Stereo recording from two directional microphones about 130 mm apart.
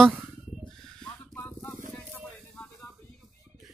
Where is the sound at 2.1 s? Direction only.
10° left (ahead or behind).